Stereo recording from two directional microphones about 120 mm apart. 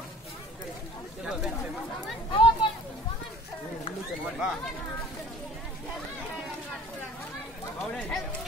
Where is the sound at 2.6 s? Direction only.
45° left (ahead or behind).